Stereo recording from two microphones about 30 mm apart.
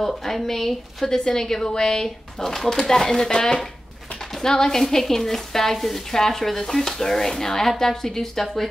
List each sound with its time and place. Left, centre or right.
0.0 s speech: centre
3.3 s speech: left
4.4 s speech: centre